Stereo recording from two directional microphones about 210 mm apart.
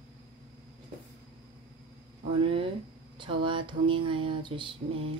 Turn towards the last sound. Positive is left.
turn(degrees=-25)  # may be behind; listen again after turning